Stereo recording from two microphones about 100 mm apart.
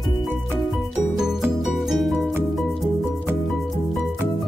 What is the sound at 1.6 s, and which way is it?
Music, centre (ahead or behind).